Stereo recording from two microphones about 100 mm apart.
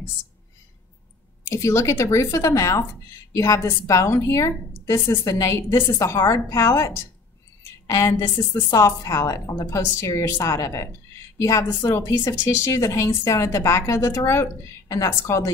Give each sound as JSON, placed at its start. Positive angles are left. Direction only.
{"t": 1.5, "sound": "a woman's voice", "side_deg": 30}
{"t": 7.8, "sound": "a sound", "side_deg": 30}
{"t": 8.5, "sound": "a woman's voice", "side_deg": 30}